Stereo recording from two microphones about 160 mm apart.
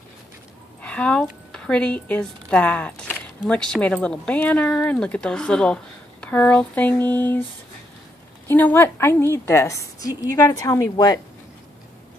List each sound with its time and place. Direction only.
0.8 s a sound: 5° left (ahead or behind)
1.2 s speech: 5° left (ahead or behind)
8.5 s speech: 10° left (ahead or behind)